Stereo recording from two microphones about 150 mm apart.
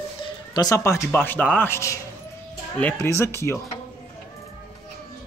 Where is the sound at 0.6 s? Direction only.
20° left (ahead or behind).